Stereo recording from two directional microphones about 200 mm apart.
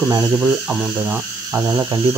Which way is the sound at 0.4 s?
5° right (ahead or behind).